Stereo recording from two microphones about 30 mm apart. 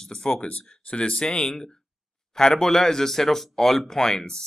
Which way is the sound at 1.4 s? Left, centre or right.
Centre.